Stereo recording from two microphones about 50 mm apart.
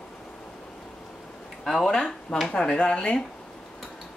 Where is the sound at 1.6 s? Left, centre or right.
Centre.